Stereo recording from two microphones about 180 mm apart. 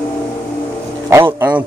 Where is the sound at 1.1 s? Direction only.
10° right (ahead or behind).